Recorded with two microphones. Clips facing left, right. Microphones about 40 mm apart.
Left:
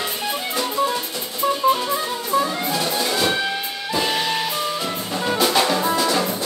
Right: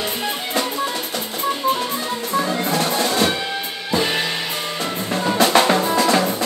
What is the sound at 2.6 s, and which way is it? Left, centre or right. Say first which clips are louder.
Music: right 3 dB; right.